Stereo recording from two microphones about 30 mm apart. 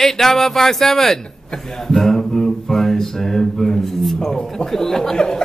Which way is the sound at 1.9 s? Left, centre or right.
Centre.